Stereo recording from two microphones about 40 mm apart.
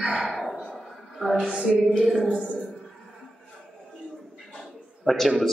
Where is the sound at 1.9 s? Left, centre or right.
Centre.